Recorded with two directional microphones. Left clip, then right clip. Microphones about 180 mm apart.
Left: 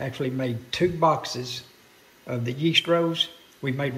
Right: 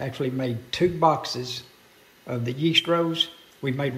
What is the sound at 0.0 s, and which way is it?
A man's voice, 10° right (ahead or behind).